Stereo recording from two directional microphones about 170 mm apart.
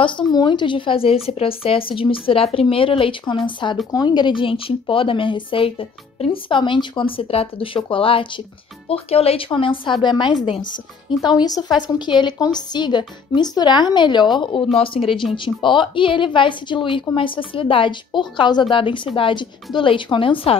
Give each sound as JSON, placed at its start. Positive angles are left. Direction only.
{"t": 0.0, "sound": "a woman's voice", "side_deg": 30}